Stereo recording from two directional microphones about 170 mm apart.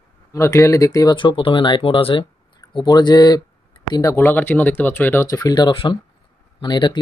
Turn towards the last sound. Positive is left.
turn(degrees=25)  # may be behind; listen again after turning